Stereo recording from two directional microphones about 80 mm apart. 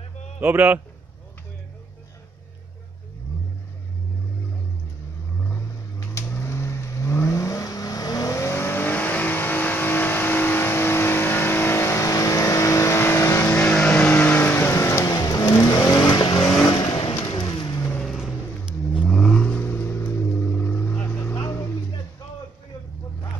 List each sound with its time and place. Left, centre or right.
0.4 s a man's voice: right
5.5 s vehicle: left
13.5 s vehicle: centre; by 15.0 s left
15.0 s vehicle: left
18.0 s vehicle: centre
18.9 s vehicle: centre
19.6 s vehicle: left